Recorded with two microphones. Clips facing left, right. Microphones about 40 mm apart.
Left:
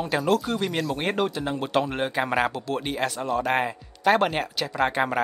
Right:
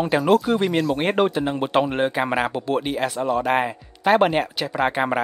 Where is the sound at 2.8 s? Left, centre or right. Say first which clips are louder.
Right 4 dB; centre.